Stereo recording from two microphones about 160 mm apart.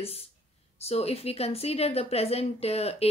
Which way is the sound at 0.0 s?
40° left (ahead or behind).